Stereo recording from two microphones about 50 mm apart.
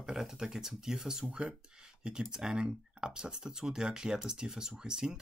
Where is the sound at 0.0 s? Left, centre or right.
Centre.